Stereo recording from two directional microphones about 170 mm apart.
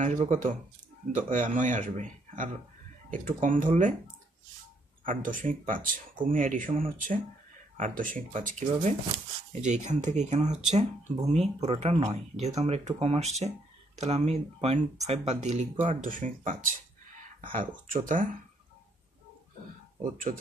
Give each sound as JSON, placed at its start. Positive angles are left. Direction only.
{"t": 0.0, "sound": "speech", "side_deg": -45}
{"t": 5.0, "sound": "speech", "side_deg": -50}